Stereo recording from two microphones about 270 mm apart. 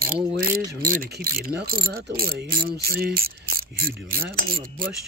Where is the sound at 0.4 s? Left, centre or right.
Right.